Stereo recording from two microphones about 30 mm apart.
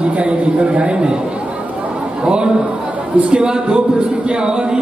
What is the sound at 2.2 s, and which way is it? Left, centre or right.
A man's voice, right.